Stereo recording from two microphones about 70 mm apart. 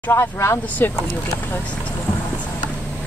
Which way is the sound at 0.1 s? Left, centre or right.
Left.